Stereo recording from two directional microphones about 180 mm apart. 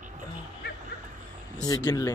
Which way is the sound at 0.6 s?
60° left (ahead or behind).